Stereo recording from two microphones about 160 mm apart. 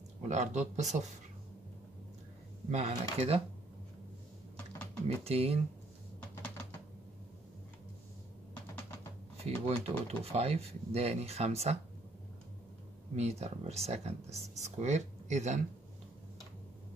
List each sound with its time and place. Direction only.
0.3 s speech: 45° right (ahead or behind)
2.7 s speech: 40° right (ahead or behind)
5.0 s speech: 40° right (ahead or behind)
9.4 s speech: 40° right (ahead or behind)
13.1 s speech: 40° right (ahead or behind)